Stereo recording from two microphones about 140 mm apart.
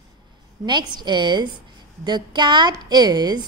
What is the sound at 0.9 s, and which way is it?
A woman's voice, 30° right (ahead or behind).